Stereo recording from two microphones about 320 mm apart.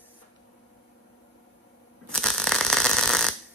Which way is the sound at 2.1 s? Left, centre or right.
Centre.